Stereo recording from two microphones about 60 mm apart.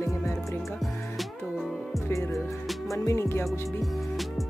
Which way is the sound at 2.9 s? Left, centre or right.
Left.